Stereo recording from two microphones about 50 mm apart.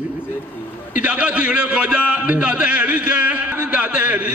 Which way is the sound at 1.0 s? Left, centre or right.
Right.